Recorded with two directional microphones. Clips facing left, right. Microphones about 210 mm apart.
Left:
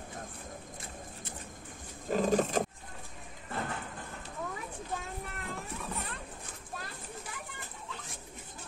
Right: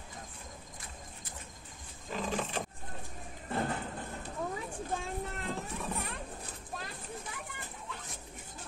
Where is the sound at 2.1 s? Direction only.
45° left (ahead or behind).